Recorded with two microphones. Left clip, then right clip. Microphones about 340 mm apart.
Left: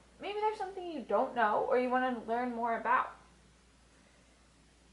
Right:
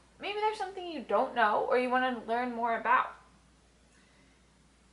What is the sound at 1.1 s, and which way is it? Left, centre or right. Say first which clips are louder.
Speech: right 3 dB; centre.